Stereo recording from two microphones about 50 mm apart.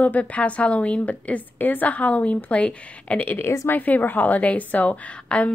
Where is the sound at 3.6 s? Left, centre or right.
Left.